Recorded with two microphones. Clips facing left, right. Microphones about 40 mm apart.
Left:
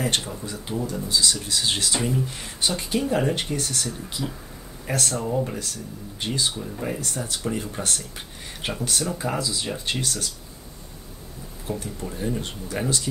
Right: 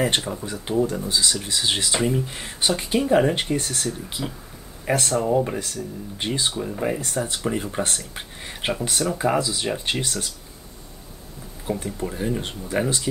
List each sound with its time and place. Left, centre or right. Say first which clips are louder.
0.0 s speech: right 3 dB; right
11.7 s speech: right 4 dB; right